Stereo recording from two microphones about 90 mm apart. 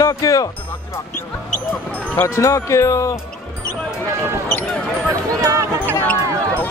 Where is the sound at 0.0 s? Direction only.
40° left (ahead or behind).